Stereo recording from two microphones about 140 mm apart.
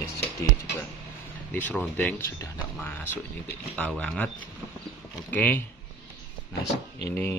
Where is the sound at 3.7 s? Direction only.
10° left (ahead or behind).